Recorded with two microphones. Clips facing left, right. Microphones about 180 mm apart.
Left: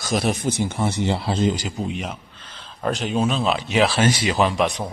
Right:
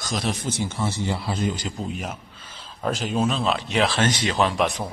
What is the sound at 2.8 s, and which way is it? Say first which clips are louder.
Speech: left 2 dB; centre (ahead or behind).